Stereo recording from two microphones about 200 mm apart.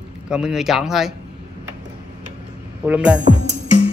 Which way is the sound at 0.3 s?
5° right (ahead or behind).